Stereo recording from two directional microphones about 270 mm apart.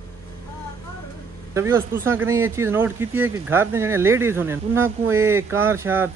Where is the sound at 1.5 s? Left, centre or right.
Centre.